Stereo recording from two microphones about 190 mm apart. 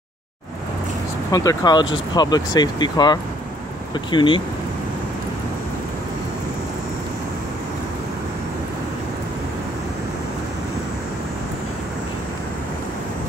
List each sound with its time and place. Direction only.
1.3 s speech: 20° left (ahead or behind)